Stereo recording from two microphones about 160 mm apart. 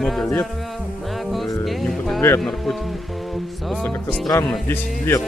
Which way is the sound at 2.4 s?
Centre (ahead or behind).